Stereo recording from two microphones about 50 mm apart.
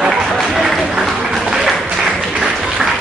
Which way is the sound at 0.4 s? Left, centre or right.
Centre.